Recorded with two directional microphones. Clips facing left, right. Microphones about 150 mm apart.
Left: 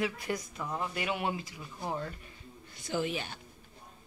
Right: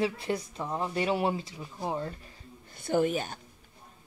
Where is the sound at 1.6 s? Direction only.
20° right (ahead or behind).